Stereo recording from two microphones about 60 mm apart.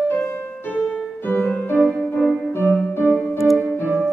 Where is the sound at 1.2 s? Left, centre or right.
Left.